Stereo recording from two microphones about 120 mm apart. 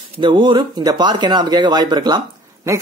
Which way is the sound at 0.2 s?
40° right (ahead or behind).